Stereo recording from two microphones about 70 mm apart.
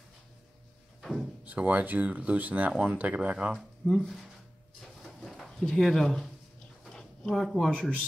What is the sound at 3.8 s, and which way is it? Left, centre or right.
Speech, centre.